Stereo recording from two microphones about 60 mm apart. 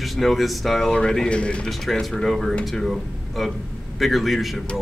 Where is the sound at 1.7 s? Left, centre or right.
Centre.